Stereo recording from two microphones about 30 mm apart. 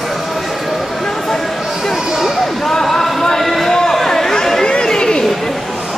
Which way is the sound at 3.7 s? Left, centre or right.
Centre.